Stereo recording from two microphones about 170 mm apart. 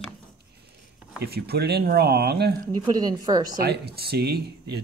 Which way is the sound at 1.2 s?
70° right (ahead or behind).